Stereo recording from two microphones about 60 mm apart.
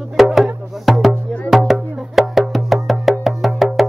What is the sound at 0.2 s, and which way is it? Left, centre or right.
Music, centre.